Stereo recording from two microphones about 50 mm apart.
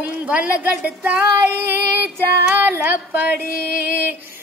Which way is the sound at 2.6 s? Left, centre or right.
Right.